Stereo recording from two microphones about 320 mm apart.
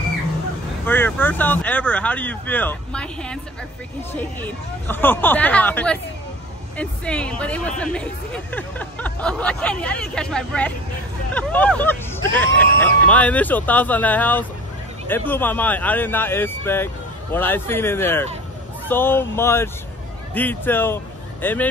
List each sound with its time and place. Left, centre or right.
0.8 s a man's voice: centre